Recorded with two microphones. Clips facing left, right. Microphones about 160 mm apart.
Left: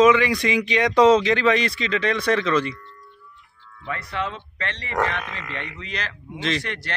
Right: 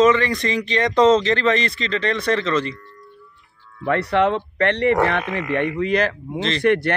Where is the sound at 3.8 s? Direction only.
70° right (ahead or behind).